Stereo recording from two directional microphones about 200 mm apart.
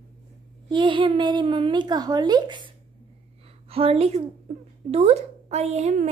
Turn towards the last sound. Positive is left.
turn(degrees=-35)  # may be behind; listen again after turning